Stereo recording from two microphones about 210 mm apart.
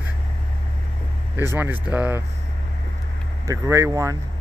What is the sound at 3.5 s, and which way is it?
Speech, 15° right (ahead or behind).